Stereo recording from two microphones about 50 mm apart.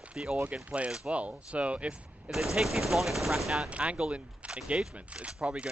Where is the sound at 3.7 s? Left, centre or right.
Right.